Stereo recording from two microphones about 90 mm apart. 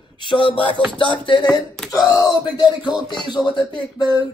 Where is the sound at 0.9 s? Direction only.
65° left (ahead or behind).